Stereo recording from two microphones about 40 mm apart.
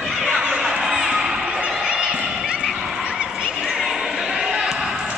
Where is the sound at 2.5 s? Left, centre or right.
Centre.